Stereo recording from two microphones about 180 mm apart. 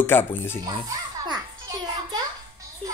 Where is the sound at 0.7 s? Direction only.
20° right (ahead or behind).